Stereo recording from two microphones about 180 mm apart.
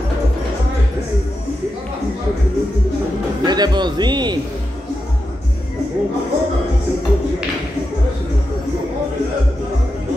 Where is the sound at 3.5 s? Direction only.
25° right (ahead or behind).